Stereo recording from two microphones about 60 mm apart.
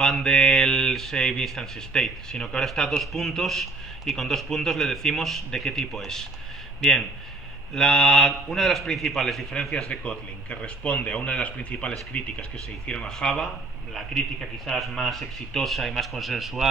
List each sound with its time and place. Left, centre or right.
0.0 s speech: centre
13.9 s speech: centre